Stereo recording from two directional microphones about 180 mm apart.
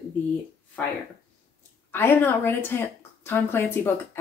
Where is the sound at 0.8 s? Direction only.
10° left (ahead or behind).